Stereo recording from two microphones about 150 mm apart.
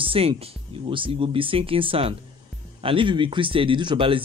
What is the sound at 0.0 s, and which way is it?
Speech, 35° right (ahead or behind).